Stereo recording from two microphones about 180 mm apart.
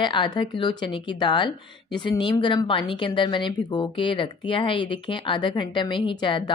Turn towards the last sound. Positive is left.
turn(degrees=25)  # may be behind; listen again after turning